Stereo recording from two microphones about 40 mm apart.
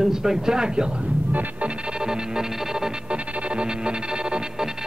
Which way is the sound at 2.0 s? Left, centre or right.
Centre.